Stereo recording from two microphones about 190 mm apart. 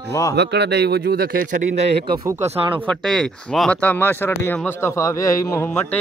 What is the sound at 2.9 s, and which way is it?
Speech, centre (ahead or behind).